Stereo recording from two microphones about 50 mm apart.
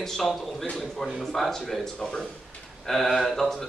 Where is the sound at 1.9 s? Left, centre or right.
Centre.